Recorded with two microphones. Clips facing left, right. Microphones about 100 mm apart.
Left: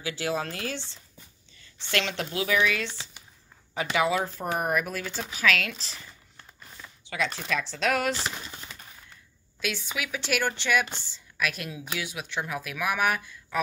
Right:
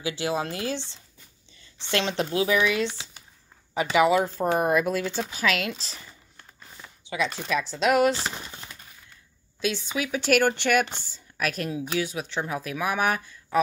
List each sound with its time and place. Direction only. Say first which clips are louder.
0.0 s speech: right 2 dB; 20° right (ahead or behind)
1.9 s speech: right 4 dB; 25° right (ahead or behind)
4.3 s speech: right 5 dB; 30° right (ahead or behind)
9.6 s speech: right 5 dB; 25° right (ahead or behind)
10.2 s a woman's voice: right 7 dB; 50° right (ahead or behind); by 13.6 s 35° right (ahead or behind)